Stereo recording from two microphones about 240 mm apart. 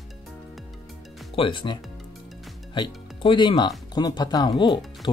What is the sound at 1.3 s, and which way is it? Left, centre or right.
Speech, left.